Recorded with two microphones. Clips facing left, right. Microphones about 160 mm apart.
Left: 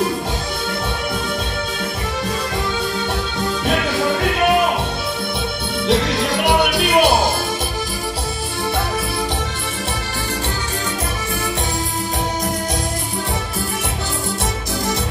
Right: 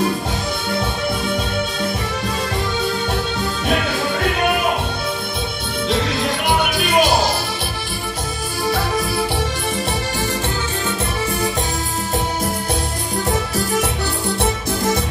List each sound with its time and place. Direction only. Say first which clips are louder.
6.4 s music: left 4 dB; 70° left (ahead or behind)